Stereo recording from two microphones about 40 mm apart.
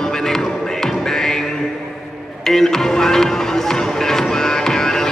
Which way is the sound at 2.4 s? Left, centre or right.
Centre.